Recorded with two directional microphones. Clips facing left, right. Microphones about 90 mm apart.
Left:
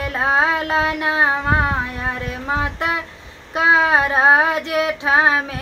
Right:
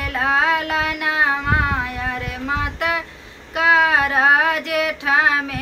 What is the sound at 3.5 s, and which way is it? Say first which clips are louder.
Female singing: left 1 dB; 25° left (ahead or behind).